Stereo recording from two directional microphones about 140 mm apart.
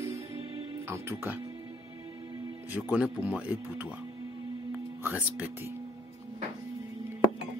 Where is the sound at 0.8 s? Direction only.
15° right (ahead or behind).